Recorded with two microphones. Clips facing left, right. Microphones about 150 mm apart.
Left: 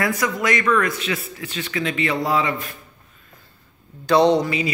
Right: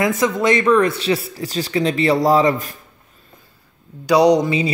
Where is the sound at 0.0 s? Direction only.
25° right (ahead or behind); by 2.8 s 40° right (ahead or behind).